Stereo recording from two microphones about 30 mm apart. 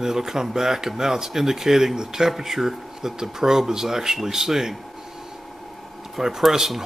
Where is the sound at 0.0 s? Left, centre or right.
Centre.